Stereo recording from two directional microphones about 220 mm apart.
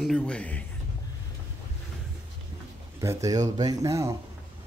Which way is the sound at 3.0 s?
15° right (ahead or behind).